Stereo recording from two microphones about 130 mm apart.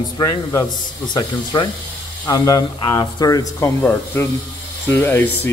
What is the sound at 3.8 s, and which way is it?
Speech, 15° left (ahead or behind).